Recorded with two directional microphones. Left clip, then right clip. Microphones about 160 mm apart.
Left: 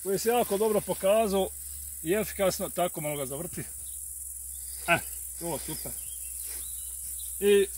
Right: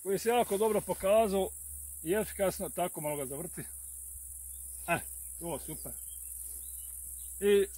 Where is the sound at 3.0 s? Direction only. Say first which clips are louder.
Left 3 dB; 50° left (ahead or behind).